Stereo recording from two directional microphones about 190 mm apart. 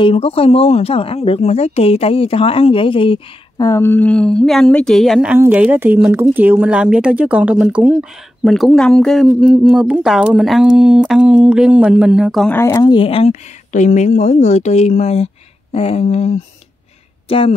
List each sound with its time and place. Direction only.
0.0 s a woman's voice: 30° left (ahead or behind); by 12.5 s centre (ahead or behind)
12.5 s speech: 15° left (ahead or behind)
12.8 s a woman's voice: 25° left (ahead or behind)